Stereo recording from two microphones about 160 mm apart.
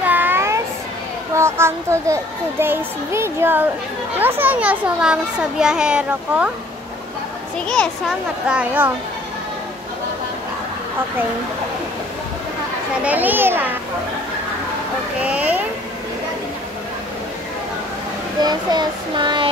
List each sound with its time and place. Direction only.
0.0 s child singing: 10° right (ahead or behind)
1.3 s a child's voice: 15° right (ahead or behind)
7.5 s a child's voice: 5° left (ahead or behind)
8.5 s a child's voice: 10° right (ahead or behind)
13.0 s a child's voice: 10° right (ahead or behind)
15.2 s a child's voice: 10° right (ahead or behind)
18.4 s speech: 25° right (ahead or behind)